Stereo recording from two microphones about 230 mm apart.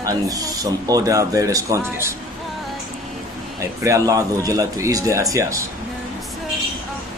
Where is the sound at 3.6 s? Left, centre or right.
Centre.